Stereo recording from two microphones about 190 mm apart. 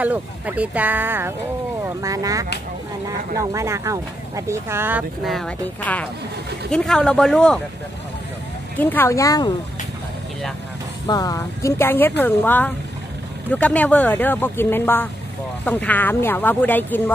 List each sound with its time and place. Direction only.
0.0 s speech: 10° right (ahead or behind)
8.7 s speech: 10° left (ahead or behind)
11.1 s speech: 20° left (ahead or behind)